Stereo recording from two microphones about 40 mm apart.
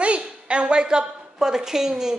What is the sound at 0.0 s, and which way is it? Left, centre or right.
A woman's voice, right.